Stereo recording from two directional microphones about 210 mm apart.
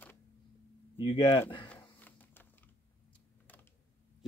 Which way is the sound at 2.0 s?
10° left (ahead or behind).